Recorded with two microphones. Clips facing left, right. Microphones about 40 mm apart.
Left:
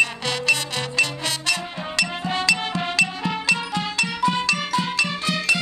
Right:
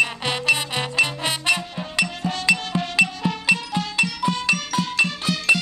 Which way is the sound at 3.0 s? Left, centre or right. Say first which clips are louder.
Right 2 dB; centre.